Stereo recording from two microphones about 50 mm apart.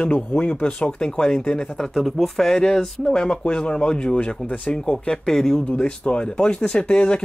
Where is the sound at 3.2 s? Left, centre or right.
Left.